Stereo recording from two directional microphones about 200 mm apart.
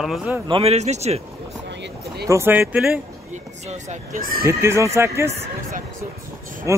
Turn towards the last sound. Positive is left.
turn(degrees=-15)  # may be behind; listen again after turning